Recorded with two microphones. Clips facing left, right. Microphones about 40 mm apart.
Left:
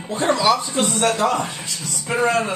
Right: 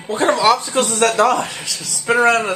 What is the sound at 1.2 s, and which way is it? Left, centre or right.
Speech, right.